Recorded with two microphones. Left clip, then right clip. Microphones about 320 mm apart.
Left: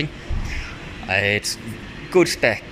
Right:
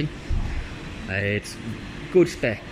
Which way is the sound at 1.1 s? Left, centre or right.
Centre.